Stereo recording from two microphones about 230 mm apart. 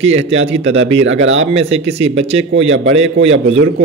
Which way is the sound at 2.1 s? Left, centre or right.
Right.